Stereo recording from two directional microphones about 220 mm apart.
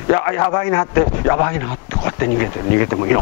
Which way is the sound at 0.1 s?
15° left (ahead or behind).